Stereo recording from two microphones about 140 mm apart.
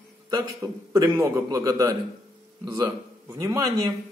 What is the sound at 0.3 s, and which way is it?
Speech, 25° right (ahead or behind).